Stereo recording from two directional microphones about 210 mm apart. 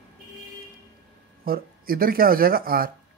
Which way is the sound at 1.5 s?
45° right (ahead or behind).